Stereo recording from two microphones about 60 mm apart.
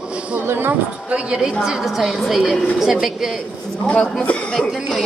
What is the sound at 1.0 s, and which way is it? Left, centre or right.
Speech, centre.